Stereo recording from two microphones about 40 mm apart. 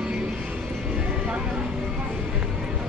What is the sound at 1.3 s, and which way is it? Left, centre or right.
Vehicle, right.